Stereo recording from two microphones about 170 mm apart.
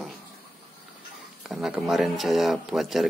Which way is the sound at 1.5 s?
5° right (ahead or behind).